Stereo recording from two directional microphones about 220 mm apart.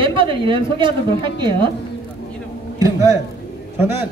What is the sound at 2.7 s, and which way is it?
A man's voice, 15° right (ahead or behind).